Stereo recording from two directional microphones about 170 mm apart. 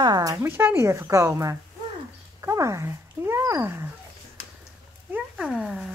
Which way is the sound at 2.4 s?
15° right (ahead or behind).